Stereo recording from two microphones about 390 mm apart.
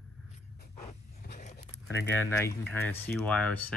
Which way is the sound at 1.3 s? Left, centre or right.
Left.